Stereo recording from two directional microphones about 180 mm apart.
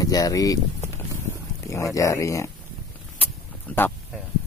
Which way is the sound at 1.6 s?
15° left (ahead or behind).